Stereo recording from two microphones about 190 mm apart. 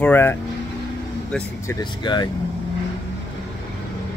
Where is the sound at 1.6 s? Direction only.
20° left (ahead or behind).